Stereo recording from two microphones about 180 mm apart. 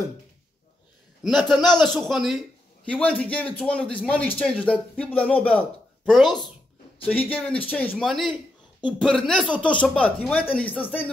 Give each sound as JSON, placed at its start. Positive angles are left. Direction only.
{"t": 1.2, "sound": "speech", "side_deg": 0}
{"t": 6.2, "sound": "speech", "side_deg": 25}
{"t": 7.1, "sound": "speech", "side_deg": 10}